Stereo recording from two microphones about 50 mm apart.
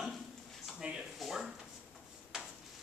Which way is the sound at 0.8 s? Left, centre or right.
Right.